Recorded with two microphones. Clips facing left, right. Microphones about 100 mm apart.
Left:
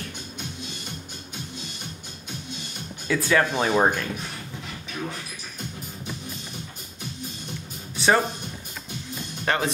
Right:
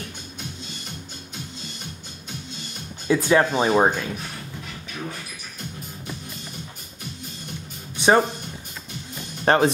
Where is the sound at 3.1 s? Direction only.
25° right (ahead or behind).